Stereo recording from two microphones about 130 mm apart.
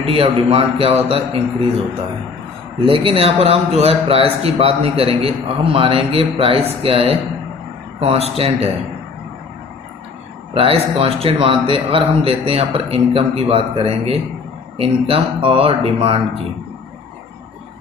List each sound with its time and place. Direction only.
0.0 s a man's voice: 45° right (ahead or behind)
2.8 s a man's voice: 45° right (ahead or behind)
10.5 s a man's voice: 50° right (ahead or behind)